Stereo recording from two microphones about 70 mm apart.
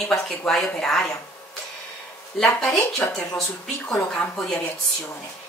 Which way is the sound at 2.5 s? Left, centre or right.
Centre.